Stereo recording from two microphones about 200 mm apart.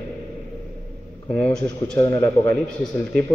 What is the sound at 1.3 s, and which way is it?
A man's voice, 15° left (ahead or behind).